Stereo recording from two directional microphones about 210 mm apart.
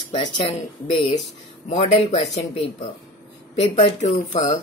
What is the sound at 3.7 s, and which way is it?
Speech, 30° left (ahead or behind).